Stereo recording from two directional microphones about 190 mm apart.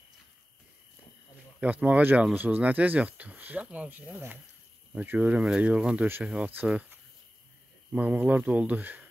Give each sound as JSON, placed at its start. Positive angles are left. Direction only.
{"t": 1.6, "sound": "speech", "side_deg": -5}